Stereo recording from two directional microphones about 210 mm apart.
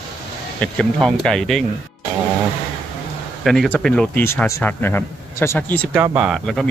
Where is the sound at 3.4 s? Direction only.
5° left (ahead or behind).